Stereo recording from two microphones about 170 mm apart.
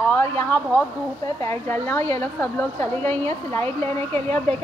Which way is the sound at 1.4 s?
15° left (ahead or behind).